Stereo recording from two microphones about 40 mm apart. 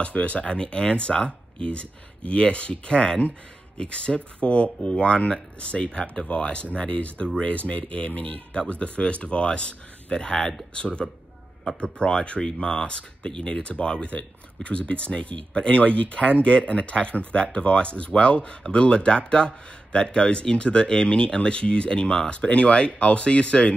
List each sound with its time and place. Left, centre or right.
0.0 s speech: left
14.0 s speech: left